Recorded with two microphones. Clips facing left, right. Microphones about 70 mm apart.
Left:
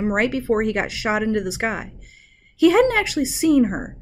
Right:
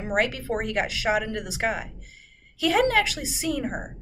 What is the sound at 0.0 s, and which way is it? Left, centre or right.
Speech, left.